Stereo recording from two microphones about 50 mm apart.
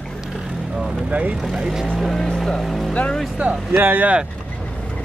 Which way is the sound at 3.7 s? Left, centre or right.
Right.